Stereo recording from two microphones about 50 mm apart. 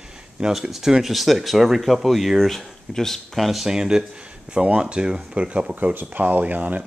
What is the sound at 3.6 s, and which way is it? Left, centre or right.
Speech, centre.